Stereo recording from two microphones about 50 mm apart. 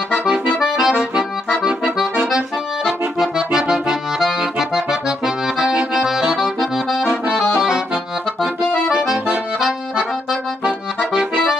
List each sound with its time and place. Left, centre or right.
0.1 s accordion: centre